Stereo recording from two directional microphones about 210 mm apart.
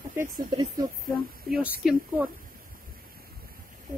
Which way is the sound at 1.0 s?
5° right (ahead or behind).